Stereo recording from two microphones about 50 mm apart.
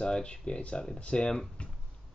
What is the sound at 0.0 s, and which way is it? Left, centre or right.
Speech, centre.